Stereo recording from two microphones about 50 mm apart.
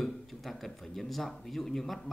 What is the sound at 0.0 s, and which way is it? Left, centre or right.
Speech, centre.